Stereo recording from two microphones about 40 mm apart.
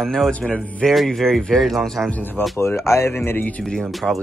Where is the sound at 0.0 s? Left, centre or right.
Centre.